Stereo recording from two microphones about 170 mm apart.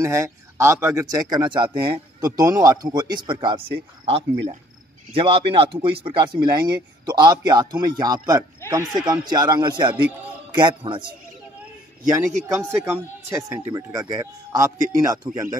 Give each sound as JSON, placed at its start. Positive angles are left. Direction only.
{"t": 0.0, "sound": "speech", "side_deg": -15}
{"t": 12.4, "sound": "speech", "side_deg": -15}